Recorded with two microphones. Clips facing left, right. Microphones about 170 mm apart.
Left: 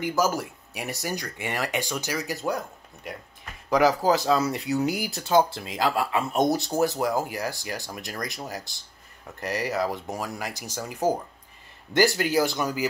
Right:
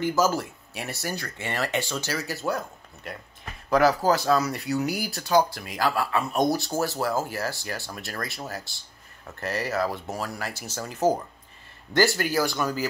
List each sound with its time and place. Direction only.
0.0 s speech: 10° left (ahead or behind)